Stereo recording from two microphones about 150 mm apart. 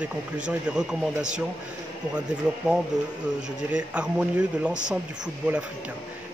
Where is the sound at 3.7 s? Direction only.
5° right (ahead or behind).